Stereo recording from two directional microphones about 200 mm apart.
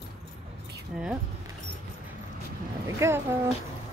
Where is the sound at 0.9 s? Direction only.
5° right (ahead or behind).